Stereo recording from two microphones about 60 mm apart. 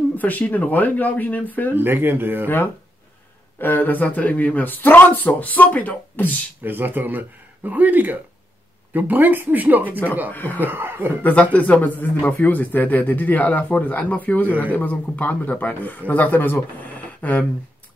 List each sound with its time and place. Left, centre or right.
0.2 s a man's voice: left
1.8 s speech: right
2.4 s a man's voice: left
6.6 s speech: right
10.3 s a man's voice: left
10.6 s speech: right
11.5 s a man's voice: left
16.8 s a sound: left